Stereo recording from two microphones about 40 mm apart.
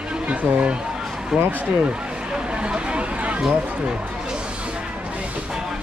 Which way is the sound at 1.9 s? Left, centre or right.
Right.